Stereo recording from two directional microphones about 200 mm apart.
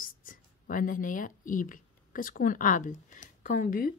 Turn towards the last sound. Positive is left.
turn(degrees=45)  # may be behind; listen again after turning